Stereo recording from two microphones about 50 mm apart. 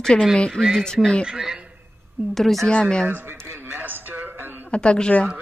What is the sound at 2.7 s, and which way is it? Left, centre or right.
Speech, centre.